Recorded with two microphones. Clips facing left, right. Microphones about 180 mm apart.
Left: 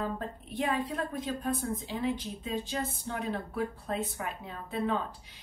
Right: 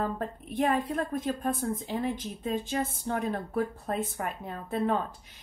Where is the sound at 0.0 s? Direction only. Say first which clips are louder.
Right 3 dB; 45° right (ahead or behind).